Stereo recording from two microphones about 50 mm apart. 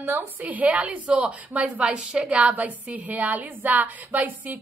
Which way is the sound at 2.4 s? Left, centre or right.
Right.